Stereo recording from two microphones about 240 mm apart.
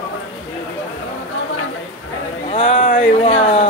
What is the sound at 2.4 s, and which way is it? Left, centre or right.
Speech, left.